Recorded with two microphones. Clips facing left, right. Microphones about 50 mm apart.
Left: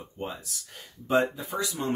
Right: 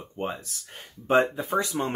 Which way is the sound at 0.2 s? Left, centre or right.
Right.